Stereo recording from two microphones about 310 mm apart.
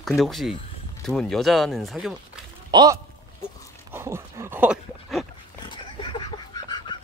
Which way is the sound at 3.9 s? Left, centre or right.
Centre.